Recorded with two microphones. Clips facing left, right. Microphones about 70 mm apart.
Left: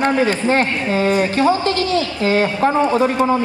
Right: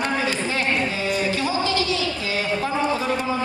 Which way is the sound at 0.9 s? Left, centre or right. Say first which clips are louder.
Left 7 dB; left.